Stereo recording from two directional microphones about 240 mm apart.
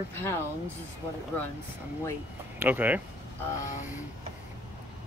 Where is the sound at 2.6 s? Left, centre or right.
Centre.